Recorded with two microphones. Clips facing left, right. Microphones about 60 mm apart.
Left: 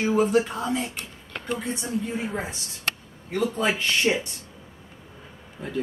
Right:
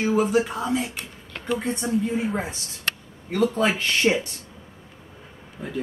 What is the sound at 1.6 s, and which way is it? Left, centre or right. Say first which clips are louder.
Speech: right 3 dB; right.